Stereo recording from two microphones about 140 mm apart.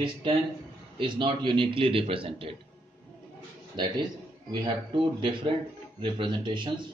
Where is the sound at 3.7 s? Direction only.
30° right (ahead or behind).